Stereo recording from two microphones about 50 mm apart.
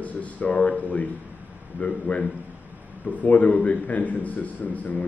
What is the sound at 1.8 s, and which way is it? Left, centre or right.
Speech, left.